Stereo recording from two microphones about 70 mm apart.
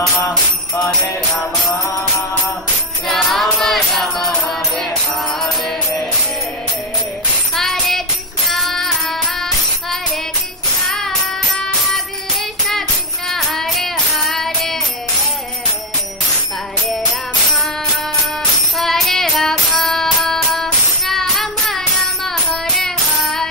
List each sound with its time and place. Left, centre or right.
1.7 s music: left
3.1 s music: centre
7.5 s music: centre
13.3 s child singing: centre
18.8 s music: centre